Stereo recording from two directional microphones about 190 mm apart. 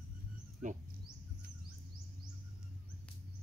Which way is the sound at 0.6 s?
40° right (ahead or behind).